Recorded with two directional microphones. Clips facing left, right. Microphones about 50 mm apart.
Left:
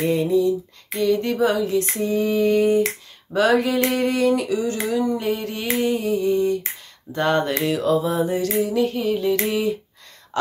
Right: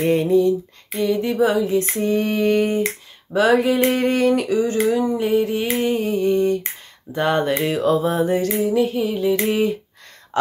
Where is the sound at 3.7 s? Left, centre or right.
Right.